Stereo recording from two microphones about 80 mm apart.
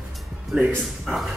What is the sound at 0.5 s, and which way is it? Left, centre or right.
Speech, centre.